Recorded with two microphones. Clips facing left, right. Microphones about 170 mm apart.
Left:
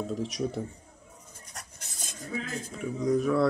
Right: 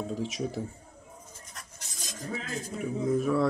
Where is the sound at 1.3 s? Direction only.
60° left (ahead or behind).